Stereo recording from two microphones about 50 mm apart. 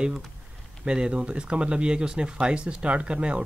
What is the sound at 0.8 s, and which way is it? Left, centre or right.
Speech, centre.